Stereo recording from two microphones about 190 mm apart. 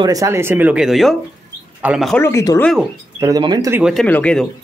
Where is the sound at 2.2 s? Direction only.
15° left (ahead or behind).